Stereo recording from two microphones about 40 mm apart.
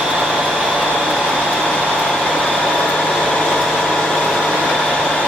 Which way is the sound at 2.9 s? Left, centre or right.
Left.